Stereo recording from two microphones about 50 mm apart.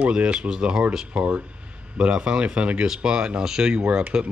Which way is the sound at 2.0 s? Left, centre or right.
Centre.